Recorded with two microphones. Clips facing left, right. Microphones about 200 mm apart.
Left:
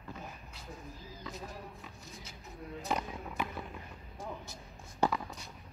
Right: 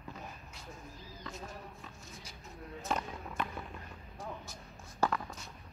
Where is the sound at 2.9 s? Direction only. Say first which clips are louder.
Left 1 dB; 15° left (ahead or behind).